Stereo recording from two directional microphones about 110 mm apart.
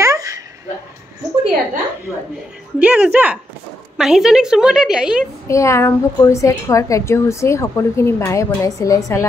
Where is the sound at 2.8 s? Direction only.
15° right (ahead or behind).